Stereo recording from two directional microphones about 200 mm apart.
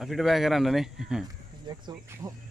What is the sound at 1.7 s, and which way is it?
Speech, 15° right (ahead or behind).